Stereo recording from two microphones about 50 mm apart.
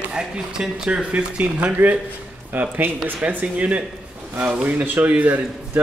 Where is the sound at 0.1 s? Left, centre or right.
Centre.